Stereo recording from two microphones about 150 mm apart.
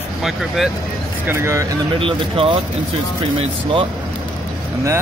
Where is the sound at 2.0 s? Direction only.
35° right (ahead or behind).